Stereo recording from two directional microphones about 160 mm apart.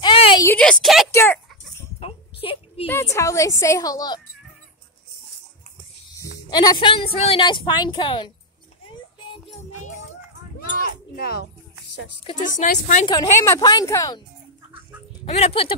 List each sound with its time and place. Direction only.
0.0 s a sound: 30° left (ahead or behind)
0.5 s a woman's voice: 5° left (ahead or behind)
1.1 s a sound: 15° left (ahead or behind)
2.0 s a sound: 35° left (ahead or behind)
2.9 s a woman's voice: 20° left (ahead or behind)
6.5 s a woman's voice: 25° left (ahead or behind)
12.4 s a woman's voice: 55° left (ahead or behind)
13.0 s a woman's voice: 25° left (ahead or behind)
15.2 s a woman's voice: 40° left (ahead or behind)